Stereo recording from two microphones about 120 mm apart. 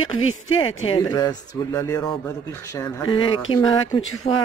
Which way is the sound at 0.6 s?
40° left (ahead or behind).